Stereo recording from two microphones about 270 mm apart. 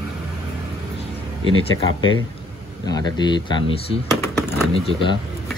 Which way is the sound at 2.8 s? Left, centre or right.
Centre.